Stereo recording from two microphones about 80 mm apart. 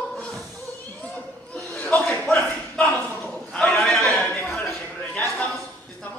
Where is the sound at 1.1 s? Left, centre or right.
Centre.